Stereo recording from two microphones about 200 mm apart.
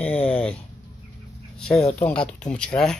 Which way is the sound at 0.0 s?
5° left (ahead or behind).